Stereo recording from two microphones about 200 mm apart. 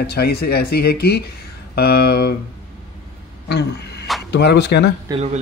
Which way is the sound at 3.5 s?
55° left (ahead or behind).